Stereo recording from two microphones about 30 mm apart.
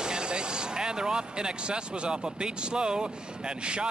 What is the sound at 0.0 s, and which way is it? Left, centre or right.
Speech, right.